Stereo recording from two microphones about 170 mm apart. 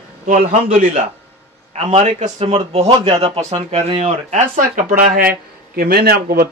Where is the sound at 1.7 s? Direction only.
40° right (ahead or behind).